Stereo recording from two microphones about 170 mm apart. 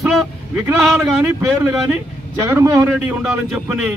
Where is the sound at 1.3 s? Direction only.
15° right (ahead or behind).